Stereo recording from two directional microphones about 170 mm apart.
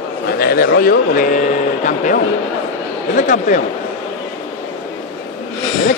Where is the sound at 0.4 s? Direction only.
60° left (ahead or behind).